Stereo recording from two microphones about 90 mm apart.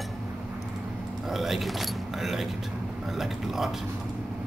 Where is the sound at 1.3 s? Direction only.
Centre (ahead or behind).